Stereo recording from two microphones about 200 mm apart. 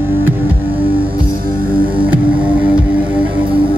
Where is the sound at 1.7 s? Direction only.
25° right (ahead or behind).